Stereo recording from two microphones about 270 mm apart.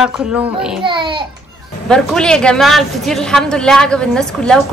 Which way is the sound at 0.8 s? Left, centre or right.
Centre.